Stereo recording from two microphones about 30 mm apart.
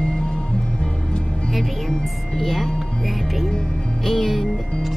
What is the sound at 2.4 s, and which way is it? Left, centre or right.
Speech, centre.